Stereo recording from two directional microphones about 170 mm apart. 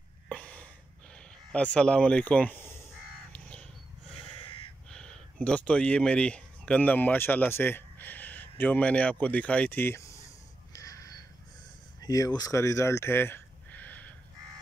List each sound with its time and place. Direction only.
0.3 s a sound: 5° left (ahead or behind)
1.5 s speech: 5° left (ahead or behind)
3.3 s crow: 5° left (ahead or behind)
4.9 s speech: 5° left (ahead or behind)
10.7 s crow: 20° left (ahead or behind)
12.0 s a sound: 20° left (ahead or behind)